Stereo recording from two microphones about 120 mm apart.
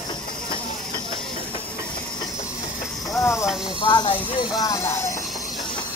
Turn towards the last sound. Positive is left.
turn(degrees=25)  # may be behind; listen again after turning